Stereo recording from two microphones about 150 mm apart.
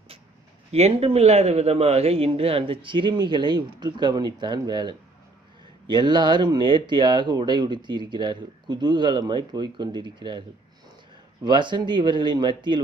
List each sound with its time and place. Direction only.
0.7 s a man's voice: 45° right (ahead or behind)
11.4 s a man's voice: 30° right (ahead or behind)